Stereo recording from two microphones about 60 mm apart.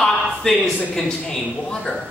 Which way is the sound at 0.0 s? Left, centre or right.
Centre.